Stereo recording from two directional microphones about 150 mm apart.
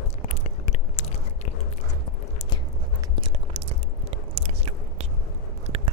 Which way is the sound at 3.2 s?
40° right (ahead or behind).